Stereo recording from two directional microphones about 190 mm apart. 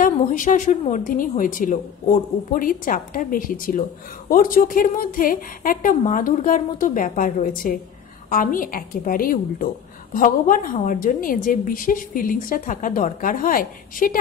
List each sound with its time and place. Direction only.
0.0 s a woman's voice: 45° left (ahead or behind)